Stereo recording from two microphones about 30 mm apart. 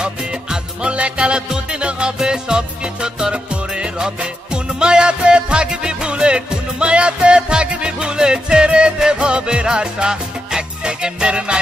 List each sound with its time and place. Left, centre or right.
0.0 s music: right
2.1 s music: right